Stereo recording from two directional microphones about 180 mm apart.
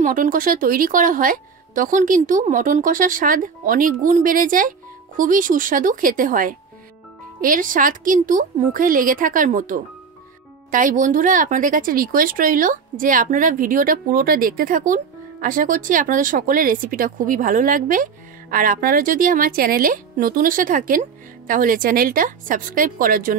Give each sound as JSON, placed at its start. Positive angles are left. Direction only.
{"t": 0.0, "sound": "speech", "side_deg": -50}